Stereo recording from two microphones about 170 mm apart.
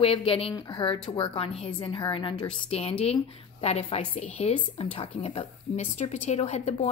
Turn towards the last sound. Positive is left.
turn(degrees=40)  # may be behind; listen again after turning